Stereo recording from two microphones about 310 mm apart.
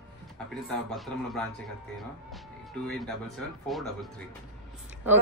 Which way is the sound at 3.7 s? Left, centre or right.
Centre.